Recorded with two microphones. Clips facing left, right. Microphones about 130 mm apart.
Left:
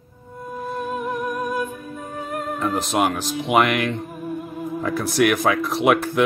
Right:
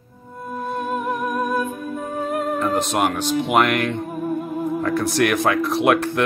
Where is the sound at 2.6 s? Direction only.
Centre (ahead or behind).